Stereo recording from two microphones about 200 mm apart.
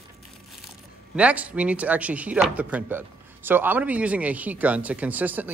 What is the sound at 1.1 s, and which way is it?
Speech, 5° right (ahead or behind).